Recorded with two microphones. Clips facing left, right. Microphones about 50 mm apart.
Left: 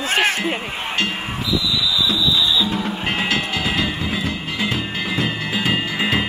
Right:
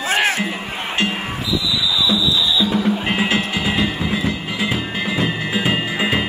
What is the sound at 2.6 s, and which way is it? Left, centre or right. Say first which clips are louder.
Music: right 4 dB; centre.